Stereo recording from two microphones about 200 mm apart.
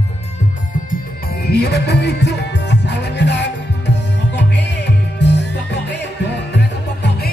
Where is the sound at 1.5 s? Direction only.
55° left (ahead or behind).